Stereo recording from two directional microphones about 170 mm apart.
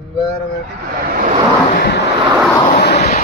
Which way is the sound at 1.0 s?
55° right (ahead or behind).